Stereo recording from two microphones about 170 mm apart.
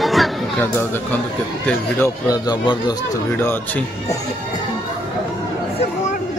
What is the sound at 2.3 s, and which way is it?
Speech, 25° left (ahead or behind).